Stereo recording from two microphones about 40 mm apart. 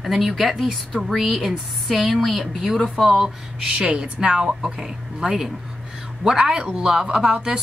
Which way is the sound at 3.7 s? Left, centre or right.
Right.